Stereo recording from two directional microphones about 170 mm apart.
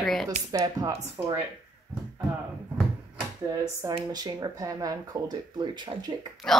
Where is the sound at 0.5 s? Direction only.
20° right (ahead or behind).